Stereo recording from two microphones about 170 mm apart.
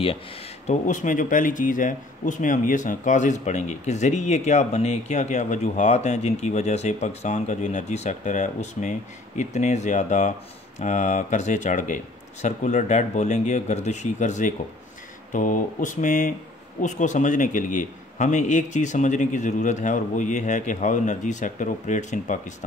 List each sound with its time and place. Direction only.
0.7 s speech: 45° left (ahead or behind)